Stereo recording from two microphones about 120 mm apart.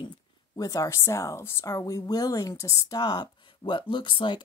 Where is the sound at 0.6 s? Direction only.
30° left (ahead or behind).